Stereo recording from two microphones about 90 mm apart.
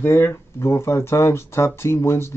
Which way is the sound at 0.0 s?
30° left (ahead or behind).